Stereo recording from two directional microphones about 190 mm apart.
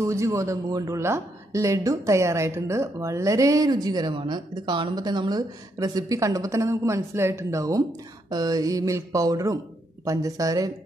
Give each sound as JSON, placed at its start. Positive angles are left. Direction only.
{"t": 0.0, "sound": "a woman's voice", "side_deg": -15}